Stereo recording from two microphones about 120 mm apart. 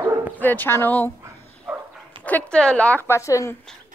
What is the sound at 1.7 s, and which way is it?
Dog, 5° right (ahead or behind).